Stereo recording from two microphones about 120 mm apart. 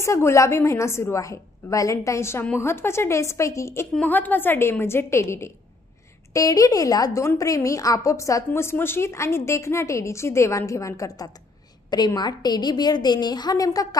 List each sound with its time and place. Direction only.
0.0 s a woman's voice: 25° left (ahead or behind)
3.9 s a woman's voice: 15° left (ahead or behind); by 13.8 s 30° left (ahead or behind)